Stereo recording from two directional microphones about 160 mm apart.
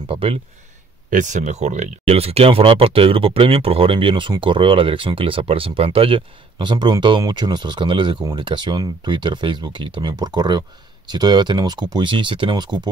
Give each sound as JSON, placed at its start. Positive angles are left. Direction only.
{"t": 0.0, "sound": "speech", "side_deg": -35}
{"t": 1.1, "sound": "speech", "side_deg": -50}